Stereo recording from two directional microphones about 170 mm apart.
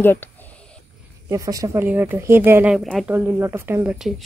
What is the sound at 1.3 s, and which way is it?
Speech, 20° right (ahead or behind).